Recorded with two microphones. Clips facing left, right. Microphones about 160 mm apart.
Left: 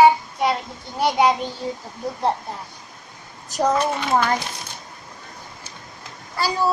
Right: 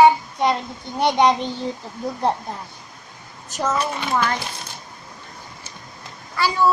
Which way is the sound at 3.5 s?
40° left (ahead or behind).